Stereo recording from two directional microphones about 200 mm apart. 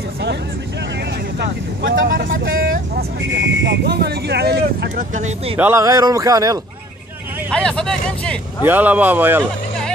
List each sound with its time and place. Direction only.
2.0 s vehicle: 45° right (ahead or behind)
5.1 s speech: 35° right (ahead or behind)
5.6 s speech: 15° right (ahead or behind)
7.5 s speech: 5° left (ahead or behind)
8.6 s speech: 10° right (ahead or behind)